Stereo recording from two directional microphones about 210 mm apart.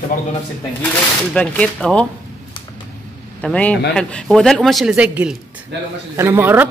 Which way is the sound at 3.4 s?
5° left (ahead or behind).